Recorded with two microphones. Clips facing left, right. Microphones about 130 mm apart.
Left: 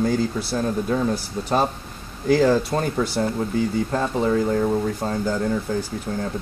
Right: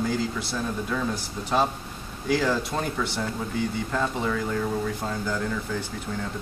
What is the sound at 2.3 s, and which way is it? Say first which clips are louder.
A man's voice: left 7 dB; 35° left (ahead or behind).